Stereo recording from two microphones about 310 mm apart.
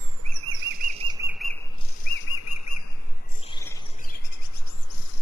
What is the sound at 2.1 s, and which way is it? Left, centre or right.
Bird flight, left.